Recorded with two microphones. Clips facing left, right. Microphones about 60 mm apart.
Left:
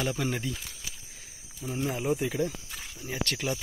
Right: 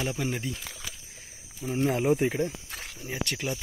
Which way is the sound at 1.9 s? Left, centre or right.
Right.